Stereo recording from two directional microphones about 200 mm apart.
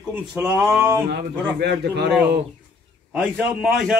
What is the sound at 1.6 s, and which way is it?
Speech, 55° right (ahead or behind).